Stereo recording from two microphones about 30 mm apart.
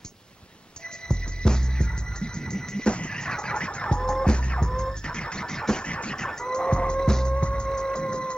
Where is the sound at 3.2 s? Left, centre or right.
Left.